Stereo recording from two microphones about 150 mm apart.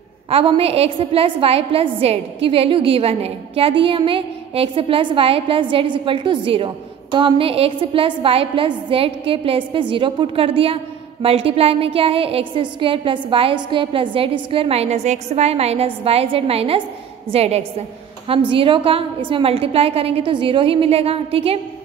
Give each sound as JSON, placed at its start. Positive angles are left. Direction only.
{"t": 0.3, "sound": "a woman's voice", "side_deg": -40}